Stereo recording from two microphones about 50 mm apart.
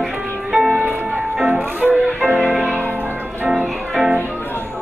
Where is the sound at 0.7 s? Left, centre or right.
Right.